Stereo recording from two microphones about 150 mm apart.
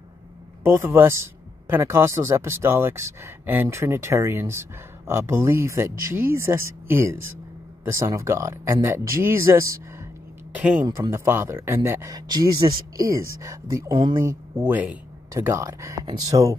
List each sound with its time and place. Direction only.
0.7 s speech: 15° right (ahead or behind)
10.5 s speech: 10° right (ahead or behind)